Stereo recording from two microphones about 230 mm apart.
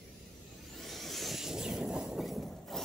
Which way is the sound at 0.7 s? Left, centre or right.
Centre.